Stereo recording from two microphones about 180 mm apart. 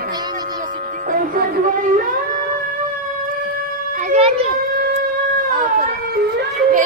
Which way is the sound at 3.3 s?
50° right (ahead or behind).